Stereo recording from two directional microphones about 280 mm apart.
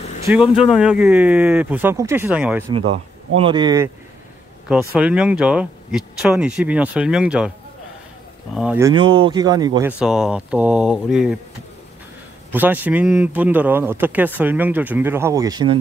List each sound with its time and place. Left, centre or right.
0.2 s speech: centre
2.9 s speech: centre
8.5 s speech: centre
12.5 s speech: centre